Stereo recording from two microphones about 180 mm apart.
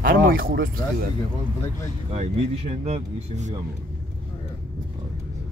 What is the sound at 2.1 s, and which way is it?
Speech, 35° right (ahead or behind).